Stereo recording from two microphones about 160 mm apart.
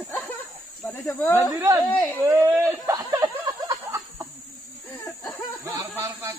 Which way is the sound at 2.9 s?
20° right (ahead or behind).